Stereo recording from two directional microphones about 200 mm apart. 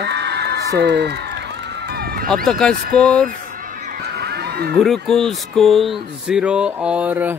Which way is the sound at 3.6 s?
40° right (ahead or behind).